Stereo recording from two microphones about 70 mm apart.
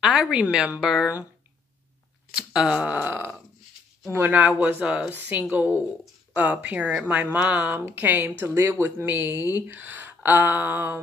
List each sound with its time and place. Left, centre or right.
0.0 s a woman's voice: centre
2.3 s speech: centre
4.7 s a woman's voice: centre; by 11.0 s right